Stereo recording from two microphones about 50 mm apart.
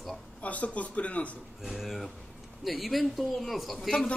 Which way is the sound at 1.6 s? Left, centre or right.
Centre.